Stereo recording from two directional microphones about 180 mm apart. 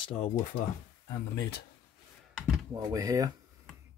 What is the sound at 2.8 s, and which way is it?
Speech, 20° right (ahead or behind).